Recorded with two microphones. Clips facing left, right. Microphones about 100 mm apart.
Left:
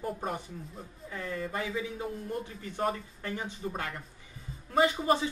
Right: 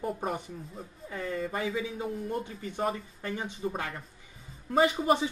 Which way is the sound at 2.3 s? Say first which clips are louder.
Right 2 dB; 15° right (ahead or behind).